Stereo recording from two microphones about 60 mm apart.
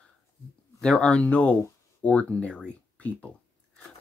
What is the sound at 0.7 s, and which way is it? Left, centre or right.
Speech, centre.